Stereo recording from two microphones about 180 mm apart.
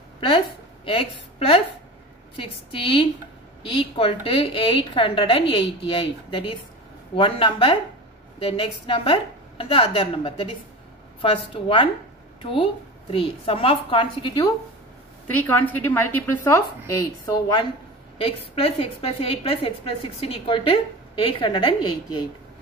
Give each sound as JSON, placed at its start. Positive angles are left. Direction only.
{"t": 0.8, "sound": "a woman's voice", "side_deg": 30}
{"t": 15.3, "sound": "a woman's voice", "side_deg": 10}
{"t": 18.1, "sound": "a woman's voice", "side_deg": 30}